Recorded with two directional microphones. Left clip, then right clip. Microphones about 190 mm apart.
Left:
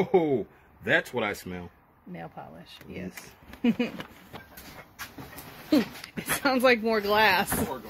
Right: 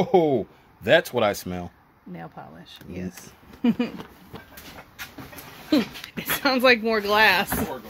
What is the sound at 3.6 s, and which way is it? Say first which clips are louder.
Speech: right 3 dB; centre (ahead or behind).